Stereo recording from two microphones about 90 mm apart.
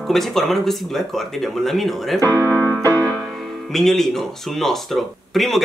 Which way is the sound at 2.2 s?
20° left (ahead or behind).